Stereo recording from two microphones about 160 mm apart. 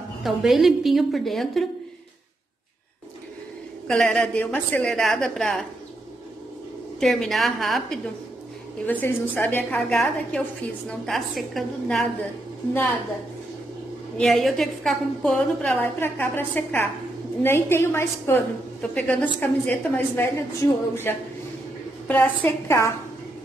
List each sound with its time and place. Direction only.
0.2 s a woman's voice: centre (ahead or behind)
3.8 s a woman's voice: 5° left (ahead or behind)
7.0 s a woman's voice: centre (ahead or behind)
14.1 s a woman's voice: centre (ahead or behind)